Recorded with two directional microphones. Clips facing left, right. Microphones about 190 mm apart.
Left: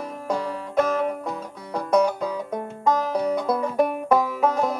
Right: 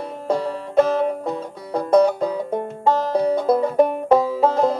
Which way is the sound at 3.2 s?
30° right (ahead or behind).